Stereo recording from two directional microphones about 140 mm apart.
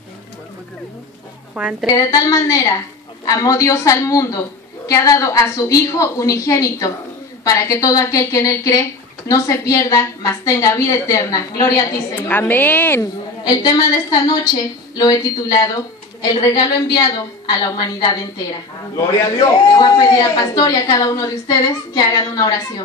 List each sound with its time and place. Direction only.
1.5 s speech: 10° right (ahead or behind)
1.9 s a man's voice: 25° left (ahead or behind)
12.2 s a woman's voice: 15° left (ahead or behind)
13.0 s a man's voice: 25° left (ahead or behind)
18.9 s a man's voice: 20° left (ahead or behind)